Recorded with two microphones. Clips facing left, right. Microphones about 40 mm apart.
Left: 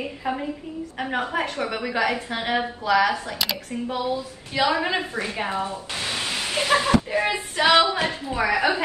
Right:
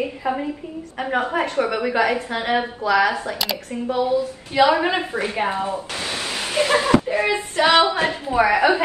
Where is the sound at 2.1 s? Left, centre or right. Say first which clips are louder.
Right 4 dB; right.